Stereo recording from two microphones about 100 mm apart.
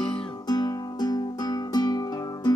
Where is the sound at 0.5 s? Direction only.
45° left (ahead or behind).